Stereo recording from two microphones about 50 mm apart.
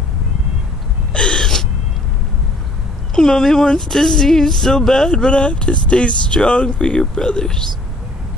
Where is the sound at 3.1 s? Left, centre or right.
Centre.